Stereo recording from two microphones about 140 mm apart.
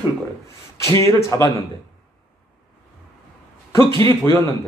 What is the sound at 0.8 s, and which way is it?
Speech, 20° left (ahead or behind).